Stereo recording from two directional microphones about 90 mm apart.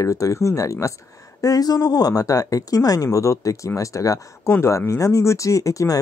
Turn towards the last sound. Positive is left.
turn(degrees=40)  # may be behind; listen again after turning